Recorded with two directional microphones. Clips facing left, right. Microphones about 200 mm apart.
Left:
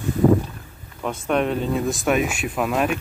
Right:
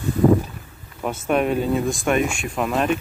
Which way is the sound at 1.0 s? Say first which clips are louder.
Right 1 dB; 5° right (ahead or behind).